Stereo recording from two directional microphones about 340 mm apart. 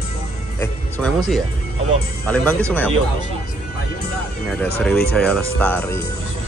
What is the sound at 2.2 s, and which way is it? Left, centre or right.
Speech, centre.